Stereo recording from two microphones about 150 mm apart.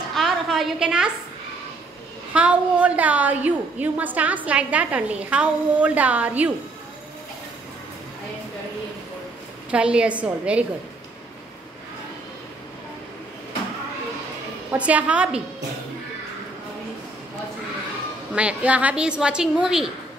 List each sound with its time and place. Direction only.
0.1 s a sound: centre (ahead or behind)
2.3 s a woman's voice: 10° right (ahead or behind)
9.7 s a woman's voice: 5° right (ahead or behind)
14.7 s a woman's voice: 10° right (ahead or behind)
18.3 s a woman's voice: 10° right (ahead or behind)